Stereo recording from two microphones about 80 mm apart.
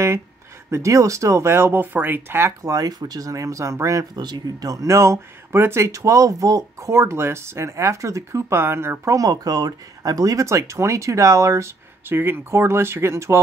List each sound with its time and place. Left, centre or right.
0.7 s speech: right
2.6 s speech: right
4.2 s speech: right
9.1 s speech: right